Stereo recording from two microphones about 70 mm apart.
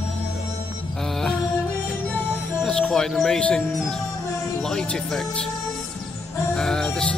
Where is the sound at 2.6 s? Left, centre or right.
Centre.